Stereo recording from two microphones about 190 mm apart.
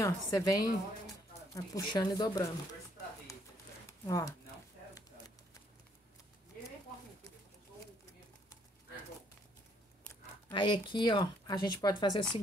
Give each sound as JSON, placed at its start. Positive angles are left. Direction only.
{"t": 0.0, "sound": "a woman's voice", "side_deg": 15}
{"t": 4.0, "sound": "a woman's voice", "side_deg": 15}
{"t": 10.5, "sound": "speech", "side_deg": 25}